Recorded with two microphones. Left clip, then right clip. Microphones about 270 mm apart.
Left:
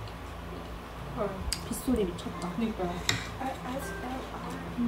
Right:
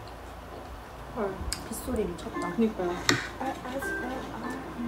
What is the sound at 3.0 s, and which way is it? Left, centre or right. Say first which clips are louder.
Speech: right 7 dB; right.